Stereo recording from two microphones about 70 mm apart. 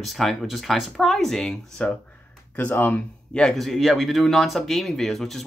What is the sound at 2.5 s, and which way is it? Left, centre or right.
Speech, left.